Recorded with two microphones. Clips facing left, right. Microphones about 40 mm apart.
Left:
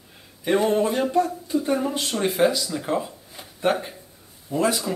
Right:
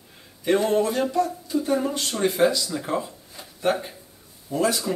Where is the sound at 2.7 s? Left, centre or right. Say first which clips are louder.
Left 1 dB; centre.